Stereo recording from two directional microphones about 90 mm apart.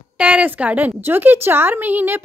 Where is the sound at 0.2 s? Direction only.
15° right (ahead or behind).